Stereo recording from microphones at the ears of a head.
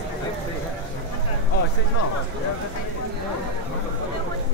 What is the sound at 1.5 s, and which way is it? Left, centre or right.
Speech, left.